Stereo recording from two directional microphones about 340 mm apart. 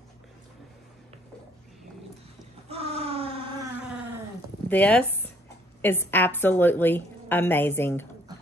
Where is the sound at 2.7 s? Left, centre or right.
Centre.